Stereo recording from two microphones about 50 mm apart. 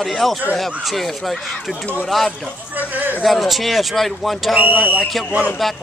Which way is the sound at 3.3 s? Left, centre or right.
Centre.